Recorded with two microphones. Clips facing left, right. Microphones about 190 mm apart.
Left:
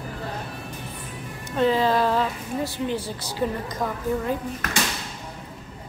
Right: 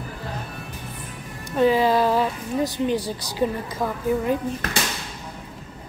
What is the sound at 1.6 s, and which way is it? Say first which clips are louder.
A woman's voice: right 2 dB; 10° right (ahead or behind).